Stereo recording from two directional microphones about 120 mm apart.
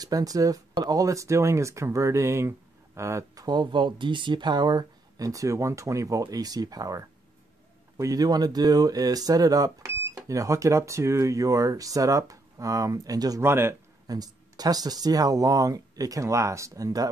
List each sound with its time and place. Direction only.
0.0 s speech: 30° right (ahead or behind)
13.4 s speech: 20° right (ahead or behind)
14.0 s speech: 30° right (ahead or behind)